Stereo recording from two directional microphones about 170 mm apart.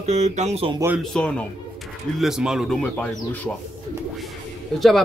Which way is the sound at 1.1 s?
5° left (ahead or behind).